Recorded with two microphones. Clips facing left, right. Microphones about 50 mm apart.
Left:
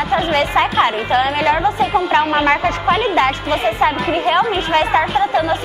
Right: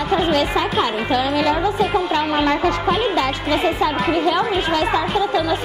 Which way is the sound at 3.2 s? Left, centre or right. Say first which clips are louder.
Left 3 dB; left.